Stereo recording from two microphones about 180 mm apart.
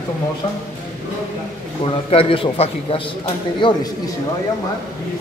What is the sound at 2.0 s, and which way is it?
A man's voice, 30° left (ahead or behind).